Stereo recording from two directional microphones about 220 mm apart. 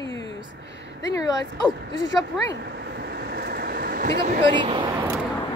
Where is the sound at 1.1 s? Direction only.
15° left (ahead or behind).